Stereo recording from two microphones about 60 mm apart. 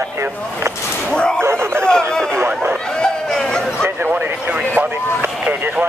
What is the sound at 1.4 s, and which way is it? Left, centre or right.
Speech, right.